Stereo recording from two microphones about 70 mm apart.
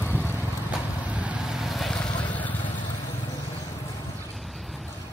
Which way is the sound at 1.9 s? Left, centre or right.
Centre.